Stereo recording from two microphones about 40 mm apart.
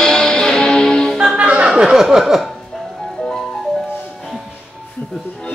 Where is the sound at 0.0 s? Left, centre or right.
Centre.